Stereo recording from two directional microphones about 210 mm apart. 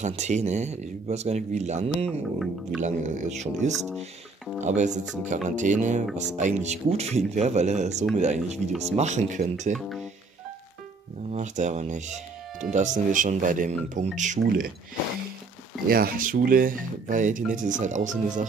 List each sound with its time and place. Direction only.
0.0 s speech: 35° right (ahead or behind)
2.0 s speech: centre (ahead or behind)
2.8 s speech: 35° right (ahead or behind)
9.8 s speech: centre (ahead or behind)
11.3 s speech: 35° right (ahead or behind)
15.9 s speech: 45° right (ahead or behind)